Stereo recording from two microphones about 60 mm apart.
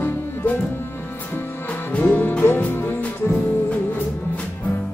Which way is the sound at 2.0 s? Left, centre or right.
Left.